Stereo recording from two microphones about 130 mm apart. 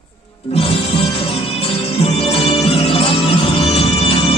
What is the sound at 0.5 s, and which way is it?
Music, 45° left (ahead or behind).